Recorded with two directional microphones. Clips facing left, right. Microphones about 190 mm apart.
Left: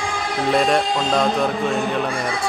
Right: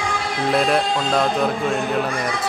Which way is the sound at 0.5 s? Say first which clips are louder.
Even; centre (ahead or behind).